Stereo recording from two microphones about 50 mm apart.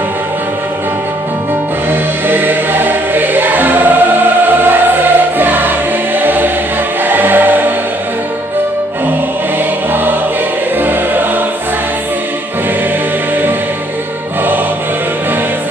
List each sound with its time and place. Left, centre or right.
1.9 s choir: right
6.1 s music: right
10.8 s music: right